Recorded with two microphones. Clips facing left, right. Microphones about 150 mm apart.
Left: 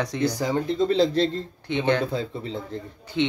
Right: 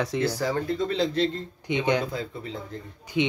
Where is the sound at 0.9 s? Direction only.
35° left (ahead or behind).